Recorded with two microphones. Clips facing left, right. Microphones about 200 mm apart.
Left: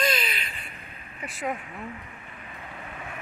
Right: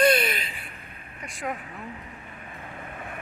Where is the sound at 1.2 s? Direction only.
Centre (ahead or behind).